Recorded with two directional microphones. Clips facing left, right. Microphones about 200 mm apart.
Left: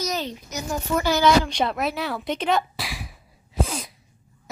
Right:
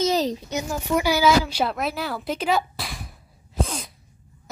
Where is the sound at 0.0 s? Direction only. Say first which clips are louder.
Right 7 dB; 35° right (ahead or behind).